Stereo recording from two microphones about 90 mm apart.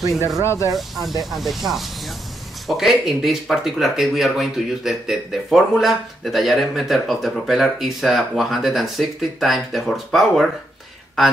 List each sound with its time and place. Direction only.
0.4 s speech: 30° left (ahead or behind)
0.7 s speech: centre (ahead or behind)